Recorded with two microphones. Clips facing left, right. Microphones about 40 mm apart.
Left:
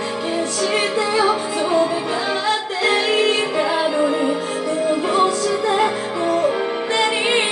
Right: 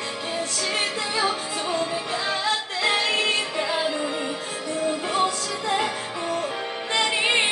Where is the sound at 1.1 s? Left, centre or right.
Centre.